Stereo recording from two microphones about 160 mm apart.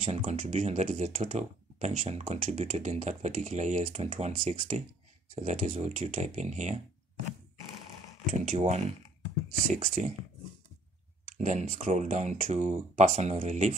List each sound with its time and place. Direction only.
0.0 s speech: 40° right (ahead or behind)
8.3 s speech: 45° right (ahead or behind)
9.8 s speech: 60° right (ahead or behind)
11.3 s speech: 50° right (ahead or behind)